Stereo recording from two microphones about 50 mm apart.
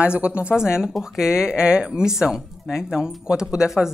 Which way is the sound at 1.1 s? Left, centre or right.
Centre.